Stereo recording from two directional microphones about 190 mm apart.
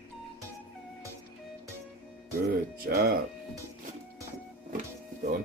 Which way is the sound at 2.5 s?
50° right (ahead or behind).